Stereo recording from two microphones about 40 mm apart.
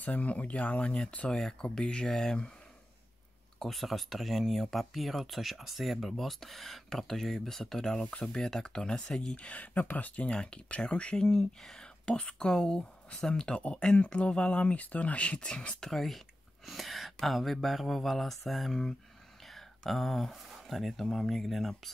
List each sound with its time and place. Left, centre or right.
0.0 s speech: left
1.3 s speech: centre
3.5 s speech: centre
9.3 s speech: left
10.2 s speech: left
11.2 s speech: centre
15.8 s speech: centre